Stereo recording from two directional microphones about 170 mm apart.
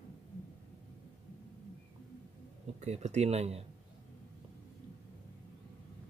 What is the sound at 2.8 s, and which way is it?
Speech, 40° right (ahead or behind).